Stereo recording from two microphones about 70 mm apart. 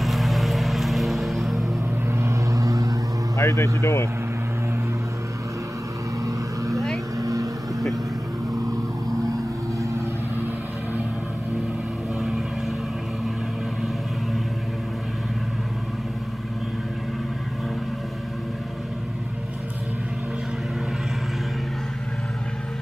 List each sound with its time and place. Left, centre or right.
0.0 s vehicle: centre
2.1 s vehicle: right
3.3 s vehicle: left
3.8 s speech: left
6.2 s vehicle: right